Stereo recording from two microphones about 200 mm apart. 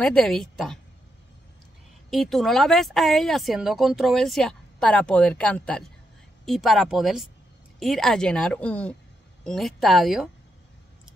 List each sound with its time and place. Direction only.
0.0 s speech: 5° left (ahead or behind)
2.0 s speech: centre (ahead or behind)